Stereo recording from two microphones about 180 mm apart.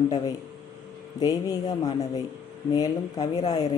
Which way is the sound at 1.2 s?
20° left (ahead or behind).